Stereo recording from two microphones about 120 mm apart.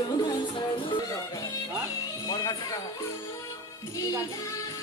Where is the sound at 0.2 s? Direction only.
35° left (ahead or behind).